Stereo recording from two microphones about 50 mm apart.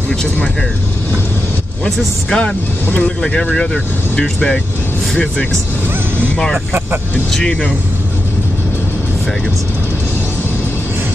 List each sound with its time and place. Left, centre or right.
1.9 s speech: centre
3.2 s speech: centre